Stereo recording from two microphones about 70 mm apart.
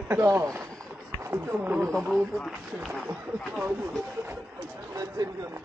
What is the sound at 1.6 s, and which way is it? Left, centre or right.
Speech, right.